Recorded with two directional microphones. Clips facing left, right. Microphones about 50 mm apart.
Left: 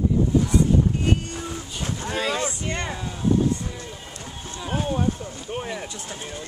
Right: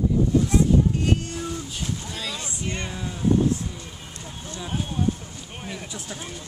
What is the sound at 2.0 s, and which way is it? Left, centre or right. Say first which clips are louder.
Boat: left 8 dB; left.